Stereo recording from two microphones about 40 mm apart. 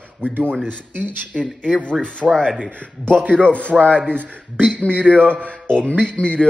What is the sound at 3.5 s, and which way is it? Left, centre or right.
A man's voice, left.